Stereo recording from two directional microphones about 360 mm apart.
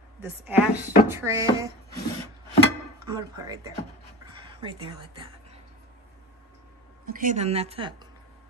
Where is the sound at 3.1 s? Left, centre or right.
Centre.